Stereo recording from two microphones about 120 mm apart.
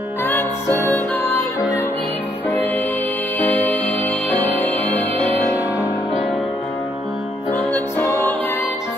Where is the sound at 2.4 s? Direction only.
15° left (ahead or behind).